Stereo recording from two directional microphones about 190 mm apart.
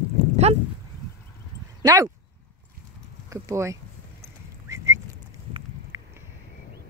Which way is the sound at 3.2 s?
15° right (ahead or behind).